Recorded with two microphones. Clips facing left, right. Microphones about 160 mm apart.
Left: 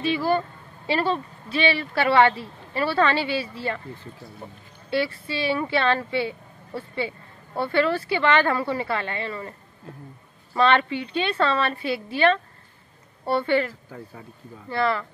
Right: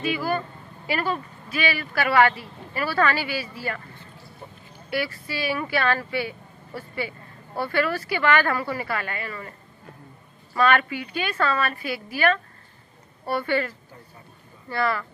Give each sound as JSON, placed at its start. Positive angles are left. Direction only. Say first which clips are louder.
{"t": 0.0, "sound": "speech", "louder": "left 3 dB", "side_deg": 30}
{"t": 4.8, "sound": "speech", "louder": "left 3 dB", "side_deg": 25}
{"t": 10.5, "sound": "speech", "louder": "left 1 dB", "side_deg": 25}